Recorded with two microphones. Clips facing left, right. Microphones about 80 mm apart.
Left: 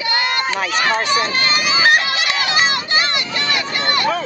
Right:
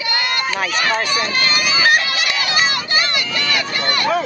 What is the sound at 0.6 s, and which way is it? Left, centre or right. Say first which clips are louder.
Run: left 2 dB; left.